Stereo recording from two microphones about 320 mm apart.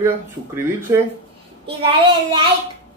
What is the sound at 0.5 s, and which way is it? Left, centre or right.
A woman's voice, centre.